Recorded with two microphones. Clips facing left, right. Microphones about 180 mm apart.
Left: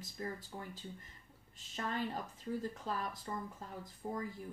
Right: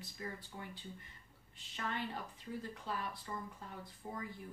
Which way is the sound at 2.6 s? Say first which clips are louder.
Left 3 dB; 40° left (ahead or behind).